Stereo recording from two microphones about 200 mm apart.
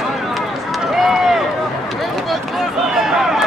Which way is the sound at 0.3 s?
Centre (ahead or behind).